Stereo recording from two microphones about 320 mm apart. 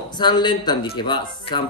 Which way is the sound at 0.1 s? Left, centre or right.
Centre.